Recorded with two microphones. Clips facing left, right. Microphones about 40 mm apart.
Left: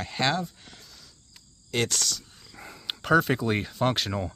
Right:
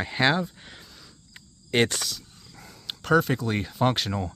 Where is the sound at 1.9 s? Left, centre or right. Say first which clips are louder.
Left 2 dB; centre.